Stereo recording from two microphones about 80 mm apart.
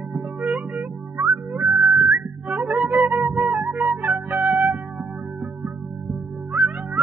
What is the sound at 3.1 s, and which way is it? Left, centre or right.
Flute, centre.